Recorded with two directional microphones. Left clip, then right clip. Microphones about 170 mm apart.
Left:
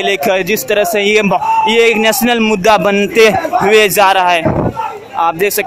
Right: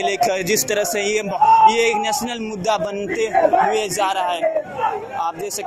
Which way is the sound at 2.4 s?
50° left (ahead or behind).